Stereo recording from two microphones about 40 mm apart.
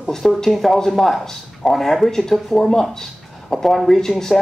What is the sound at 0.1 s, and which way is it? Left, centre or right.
Speech, centre.